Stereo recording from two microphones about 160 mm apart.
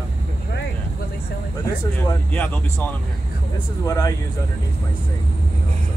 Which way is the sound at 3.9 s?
20° left (ahead or behind).